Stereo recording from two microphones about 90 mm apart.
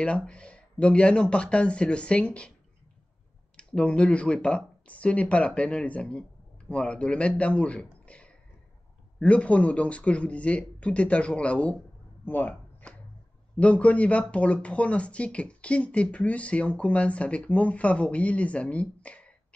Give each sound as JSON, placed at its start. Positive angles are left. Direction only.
{"t": 0.2, "sound": "speech", "side_deg": 10}
{"t": 3.5, "sound": "speech", "side_deg": 10}
{"t": 12.3, "sound": "a sound", "side_deg": 20}
{"t": 13.6, "sound": "speech", "side_deg": 15}